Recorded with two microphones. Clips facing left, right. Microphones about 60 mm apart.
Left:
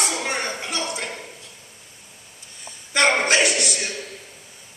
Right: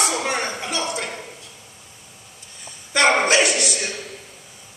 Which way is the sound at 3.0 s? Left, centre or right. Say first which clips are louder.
Right 2 dB; centre.